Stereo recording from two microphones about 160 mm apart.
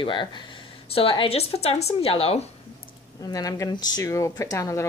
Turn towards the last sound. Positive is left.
turn(degrees=20)  # may be behind; listen again after turning